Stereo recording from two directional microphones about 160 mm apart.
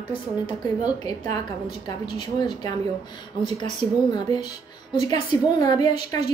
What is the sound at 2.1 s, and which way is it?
Speech, 25° left (ahead or behind).